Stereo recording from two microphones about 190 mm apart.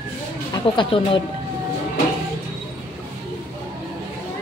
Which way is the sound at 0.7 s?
25° left (ahead or behind).